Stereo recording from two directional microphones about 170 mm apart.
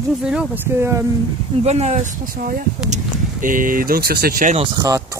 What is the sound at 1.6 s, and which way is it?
Speech, 40° right (ahead or behind).